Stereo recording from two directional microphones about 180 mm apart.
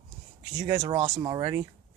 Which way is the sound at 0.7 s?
35° right (ahead or behind).